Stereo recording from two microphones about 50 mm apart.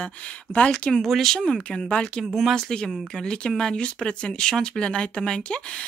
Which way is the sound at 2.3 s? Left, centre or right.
Centre.